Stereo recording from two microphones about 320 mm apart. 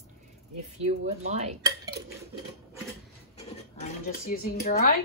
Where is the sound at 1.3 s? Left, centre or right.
Centre.